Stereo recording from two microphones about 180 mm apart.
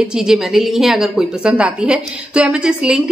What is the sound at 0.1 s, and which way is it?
A woman's voice, 5° right (ahead or behind).